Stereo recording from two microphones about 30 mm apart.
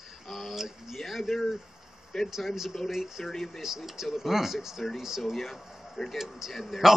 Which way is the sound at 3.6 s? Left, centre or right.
Centre.